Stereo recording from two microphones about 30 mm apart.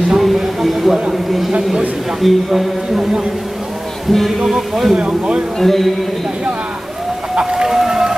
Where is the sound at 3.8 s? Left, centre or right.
Centre.